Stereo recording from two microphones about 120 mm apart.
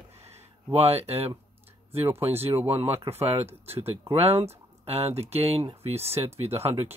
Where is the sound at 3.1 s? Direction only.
55° right (ahead or behind).